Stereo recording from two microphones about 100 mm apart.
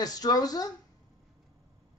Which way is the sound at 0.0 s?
40° left (ahead or behind).